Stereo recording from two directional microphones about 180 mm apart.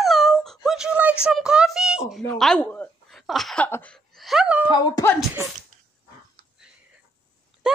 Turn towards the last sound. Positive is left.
turn(degrees=-5)  # may be behind; listen again after turning